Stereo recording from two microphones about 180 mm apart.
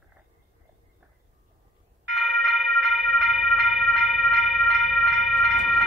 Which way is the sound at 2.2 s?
Centre (ahead or behind).